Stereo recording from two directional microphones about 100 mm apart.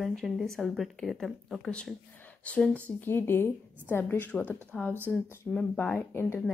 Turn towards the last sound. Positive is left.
turn(degrees=25)  # may be behind; listen again after turning